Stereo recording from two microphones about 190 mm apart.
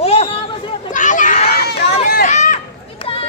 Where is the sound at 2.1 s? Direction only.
40° left (ahead or behind).